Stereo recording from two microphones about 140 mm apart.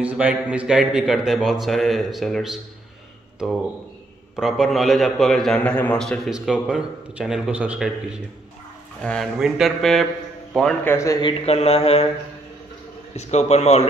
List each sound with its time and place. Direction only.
0.0 s a man's voice: 10° right (ahead or behind)
4.4 s a man's voice: centre (ahead or behind)
9.0 s a man's voice: 5° left (ahead or behind)
10.8 s speech: 20° left (ahead or behind)
11.2 s mantra: 45° left (ahead or behind)
13.1 s mantra: 50° left (ahead or behind)